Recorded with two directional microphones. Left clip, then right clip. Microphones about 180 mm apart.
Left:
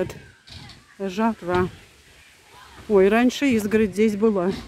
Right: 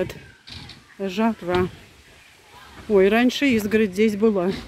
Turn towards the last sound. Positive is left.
turn(degrees=-5)  # may be behind; listen again after turning